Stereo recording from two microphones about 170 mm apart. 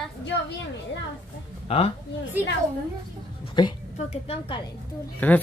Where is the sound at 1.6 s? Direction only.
35° left (ahead or behind).